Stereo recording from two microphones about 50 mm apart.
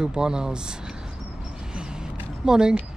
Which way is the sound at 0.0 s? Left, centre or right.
Centre.